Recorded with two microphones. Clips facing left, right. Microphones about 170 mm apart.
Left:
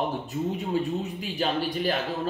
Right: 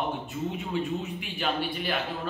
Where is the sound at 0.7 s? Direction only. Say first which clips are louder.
Left 3 dB; 40° left (ahead or behind).